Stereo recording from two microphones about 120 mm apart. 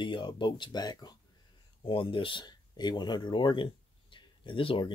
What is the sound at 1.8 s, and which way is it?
Speech, 45° left (ahead or behind).